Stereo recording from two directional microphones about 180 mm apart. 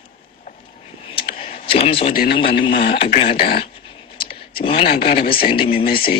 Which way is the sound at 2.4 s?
30° left (ahead or behind).